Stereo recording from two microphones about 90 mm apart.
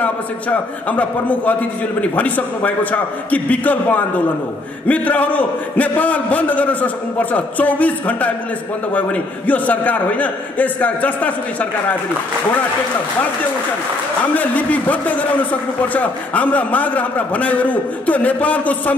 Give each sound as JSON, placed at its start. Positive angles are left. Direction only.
{"t": 0.0, "sound": "a man's voice", "side_deg": 15}
{"t": 14.3, "sound": "a man's voice", "side_deg": 15}